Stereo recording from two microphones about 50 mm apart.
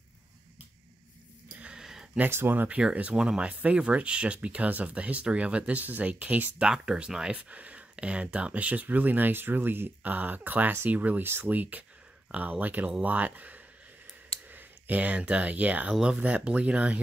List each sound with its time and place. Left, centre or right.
1.7 s a sound: centre
2.2 s speech: right
2.7 s speech: right
6.9 s speech: centre
7.4 s speech: right
15.9 s speech: centre